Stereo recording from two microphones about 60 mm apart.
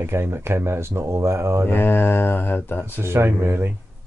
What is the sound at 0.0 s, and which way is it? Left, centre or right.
Speech, right.